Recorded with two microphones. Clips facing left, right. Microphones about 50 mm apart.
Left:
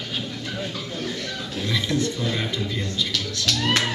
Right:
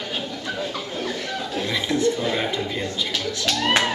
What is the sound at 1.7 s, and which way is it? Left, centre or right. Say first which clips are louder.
A man's voice: right 3 dB; centre.